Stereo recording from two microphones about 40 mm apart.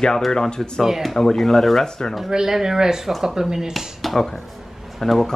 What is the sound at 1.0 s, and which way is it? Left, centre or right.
Speech, centre.